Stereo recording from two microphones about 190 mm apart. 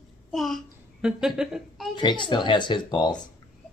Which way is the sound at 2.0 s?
25° left (ahead or behind).